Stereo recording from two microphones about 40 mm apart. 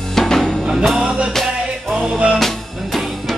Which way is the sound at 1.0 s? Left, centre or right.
Right.